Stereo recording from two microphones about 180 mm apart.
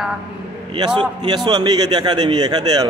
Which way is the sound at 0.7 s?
25° right (ahead or behind).